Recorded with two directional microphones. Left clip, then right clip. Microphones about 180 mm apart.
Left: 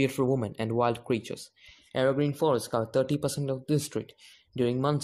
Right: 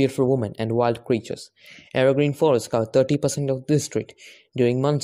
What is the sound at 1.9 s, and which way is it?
Speech, 40° right (ahead or behind).